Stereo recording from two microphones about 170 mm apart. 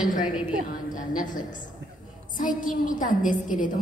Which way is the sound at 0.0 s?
50° left (ahead or behind).